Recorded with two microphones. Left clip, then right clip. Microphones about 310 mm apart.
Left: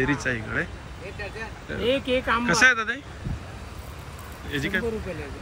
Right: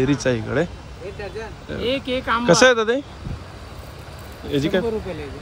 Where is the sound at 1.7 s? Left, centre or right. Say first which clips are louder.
Right 1 dB; centre.